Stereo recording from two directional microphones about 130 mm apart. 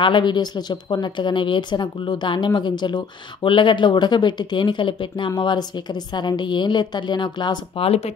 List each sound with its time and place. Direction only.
0.0 s a woman's voice: 35° left (ahead or behind)